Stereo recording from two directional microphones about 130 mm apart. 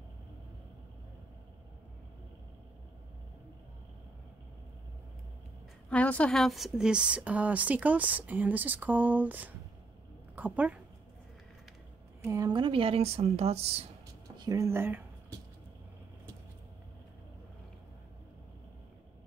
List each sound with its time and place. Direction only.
5.9 s a woman's voice: 10° left (ahead or behind); by 10.8 s 10° right (ahead or behind)
12.2 s speech: 25° right (ahead or behind); by 13.8 s 50° right (ahead or behind)
14.2 s a sound: 30° right (ahead or behind)
14.7 s speech: 15° right (ahead or behind)